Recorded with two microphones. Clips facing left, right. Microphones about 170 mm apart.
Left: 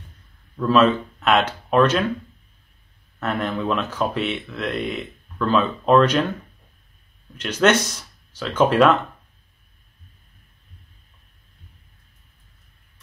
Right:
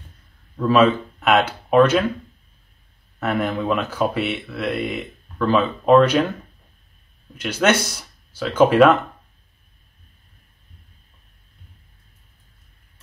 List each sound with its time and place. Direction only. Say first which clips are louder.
0.7 s speech: right 1 dB; 10° right (ahead or behind)
3.2 s speech: right 2 dB; 10° right (ahead or behind)
7.3 s speech: left 1 dB; 10° right (ahead or behind)